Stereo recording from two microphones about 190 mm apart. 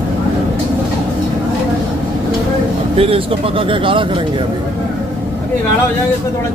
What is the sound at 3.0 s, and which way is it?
Speech, 30° right (ahead or behind).